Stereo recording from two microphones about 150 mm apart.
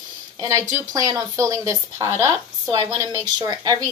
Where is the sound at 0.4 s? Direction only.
25° right (ahead or behind).